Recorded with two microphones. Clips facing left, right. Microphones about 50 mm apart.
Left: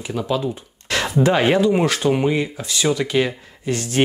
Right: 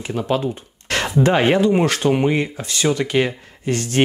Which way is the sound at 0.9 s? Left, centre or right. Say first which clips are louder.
Even; right.